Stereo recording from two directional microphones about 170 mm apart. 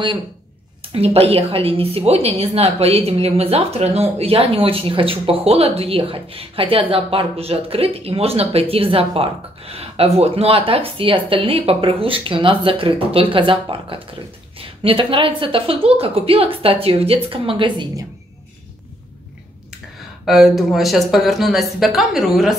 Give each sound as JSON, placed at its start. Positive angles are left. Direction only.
{"t": 0.9, "sound": "a woman's voice", "side_deg": -35}
{"t": 20.2, "sound": "speech", "side_deg": 0}